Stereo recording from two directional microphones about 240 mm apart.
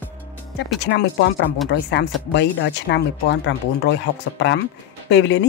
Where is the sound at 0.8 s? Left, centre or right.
Left.